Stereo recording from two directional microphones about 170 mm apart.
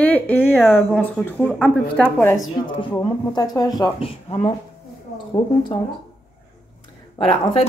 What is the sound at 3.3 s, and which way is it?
Speech, 25° left (ahead or behind).